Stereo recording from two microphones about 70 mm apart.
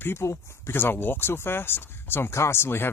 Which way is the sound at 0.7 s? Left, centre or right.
Left.